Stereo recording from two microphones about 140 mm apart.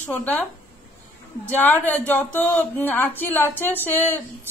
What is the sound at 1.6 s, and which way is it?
Speech, 15° left (ahead or behind).